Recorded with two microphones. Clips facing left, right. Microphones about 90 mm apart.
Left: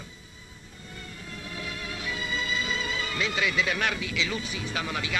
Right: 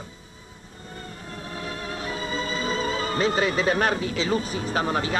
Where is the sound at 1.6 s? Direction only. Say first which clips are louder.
Right 5 dB; 40° right (ahead or behind).